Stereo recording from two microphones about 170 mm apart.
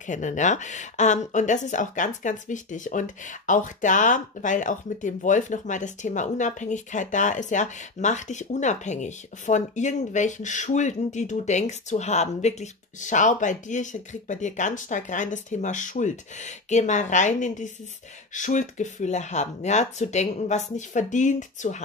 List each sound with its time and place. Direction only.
0.0 s speech: 45° left (ahead or behind)